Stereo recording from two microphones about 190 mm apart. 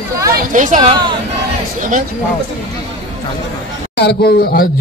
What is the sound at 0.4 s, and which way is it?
A woman's voice, 40° right (ahead or behind).